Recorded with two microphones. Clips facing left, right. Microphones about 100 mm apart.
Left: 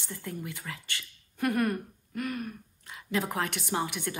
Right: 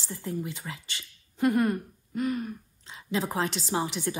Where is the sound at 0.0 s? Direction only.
20° right (ahead or behind).